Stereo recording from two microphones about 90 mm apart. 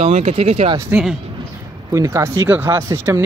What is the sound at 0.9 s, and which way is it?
Speech, 20° right (ahead or behind).